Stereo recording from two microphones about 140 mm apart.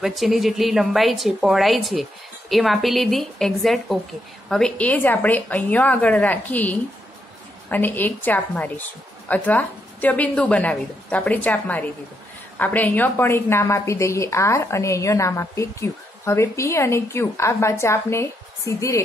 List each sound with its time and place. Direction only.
0.0 s a woman's voice: centre (ahead or behind); by 18.9 s 20° left (ahead or behind)